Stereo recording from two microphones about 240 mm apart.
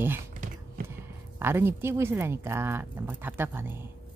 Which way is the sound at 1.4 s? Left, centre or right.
Centre.